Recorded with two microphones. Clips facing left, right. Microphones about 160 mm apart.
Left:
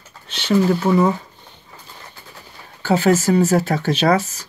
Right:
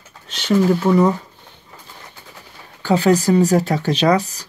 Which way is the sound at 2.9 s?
40° right (ahead or behind).